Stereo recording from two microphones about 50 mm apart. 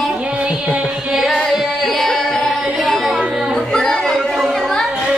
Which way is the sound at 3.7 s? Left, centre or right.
Centre.